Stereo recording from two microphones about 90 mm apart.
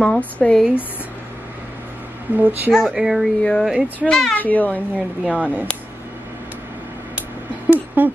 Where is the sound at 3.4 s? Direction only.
10° left (ahead or behind).